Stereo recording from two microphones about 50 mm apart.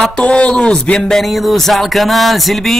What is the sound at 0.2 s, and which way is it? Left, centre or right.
Speech, left.